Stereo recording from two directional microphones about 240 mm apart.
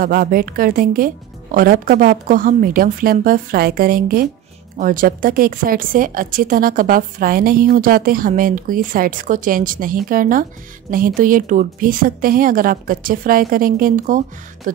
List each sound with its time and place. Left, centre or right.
0.0 s a woman's voice: right